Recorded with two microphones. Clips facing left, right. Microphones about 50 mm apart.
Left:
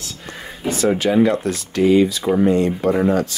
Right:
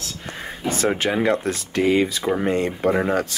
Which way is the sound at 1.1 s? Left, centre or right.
Right.